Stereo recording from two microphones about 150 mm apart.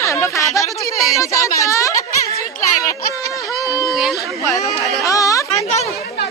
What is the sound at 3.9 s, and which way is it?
Speech, centre (ahead or behind).